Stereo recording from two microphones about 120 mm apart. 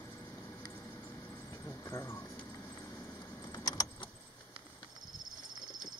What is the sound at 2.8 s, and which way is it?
Keys jangling, 25° left (ahead or behind).